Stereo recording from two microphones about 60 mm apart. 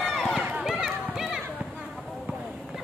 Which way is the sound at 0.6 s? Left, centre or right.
Centre.